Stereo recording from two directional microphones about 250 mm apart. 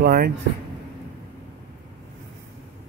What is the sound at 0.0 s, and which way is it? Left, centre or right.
Speech, right.